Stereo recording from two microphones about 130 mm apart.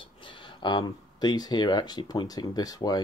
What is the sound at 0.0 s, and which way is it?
Speech, 40° left (ahead or behind).